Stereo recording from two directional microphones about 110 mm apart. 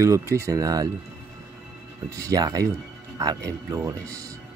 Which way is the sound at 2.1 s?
30° right (ahead or behind).